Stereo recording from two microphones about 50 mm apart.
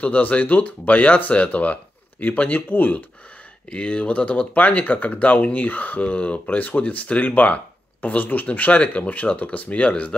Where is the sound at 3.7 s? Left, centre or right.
Left.